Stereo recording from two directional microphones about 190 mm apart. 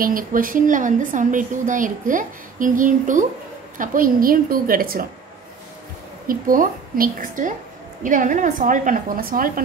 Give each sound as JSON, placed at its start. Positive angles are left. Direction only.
{"t": 0.0, "sound": "a woman's voice", "side_deg": -45}
{"t": 6.2, "sound": "a woman's voice", "side_deg": -45}